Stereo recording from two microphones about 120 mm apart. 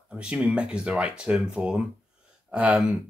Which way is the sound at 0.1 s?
10° right (ahead or behind).